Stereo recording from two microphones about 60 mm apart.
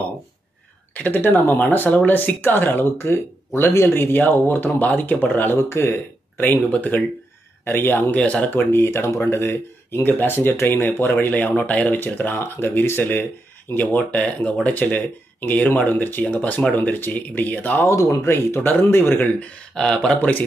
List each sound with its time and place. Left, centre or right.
0.9 s speech: left
5.6 s speech: left
8.2 s speech: left
8.7 s speech: left
13.7 s speech: left
17.8 s speech: left
18.2 s speech: left
19.4 s speech: centre
20.2 s speech: left